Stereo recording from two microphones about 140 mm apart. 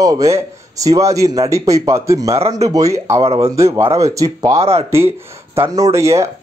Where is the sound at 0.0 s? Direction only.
25° right (ahead or behind).